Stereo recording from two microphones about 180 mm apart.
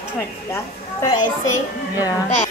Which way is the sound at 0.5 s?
20° left (ahead or behind).